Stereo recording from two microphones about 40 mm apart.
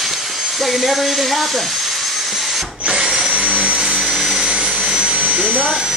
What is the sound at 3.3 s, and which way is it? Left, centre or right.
Vehicle, right.